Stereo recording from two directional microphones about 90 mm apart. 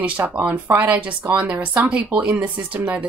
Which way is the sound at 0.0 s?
15° right (ahead or behind).